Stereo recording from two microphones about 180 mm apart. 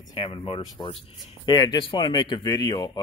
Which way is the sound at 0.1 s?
30° left (ahead or behind).